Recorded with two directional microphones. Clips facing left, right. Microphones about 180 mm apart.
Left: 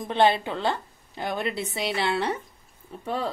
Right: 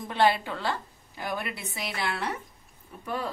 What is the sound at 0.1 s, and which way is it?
A woman's voice, 20° left (ahead or behind).